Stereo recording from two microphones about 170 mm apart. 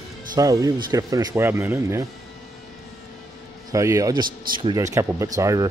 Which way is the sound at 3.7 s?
20° right (ahead or behind).